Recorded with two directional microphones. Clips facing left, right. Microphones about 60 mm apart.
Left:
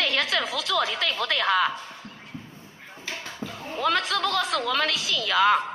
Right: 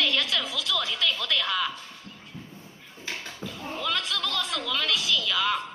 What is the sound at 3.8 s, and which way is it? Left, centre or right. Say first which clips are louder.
A woman's voice: left 7 dB; left.